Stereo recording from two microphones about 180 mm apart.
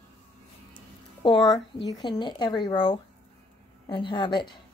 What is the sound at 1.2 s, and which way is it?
Speech, 25° left (ahead or behind).